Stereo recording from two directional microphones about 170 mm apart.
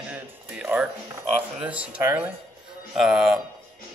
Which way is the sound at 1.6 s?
5° right (ahead or behind).